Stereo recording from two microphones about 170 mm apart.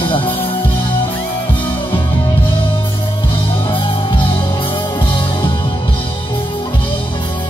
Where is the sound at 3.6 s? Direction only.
30° left (ahead or behind).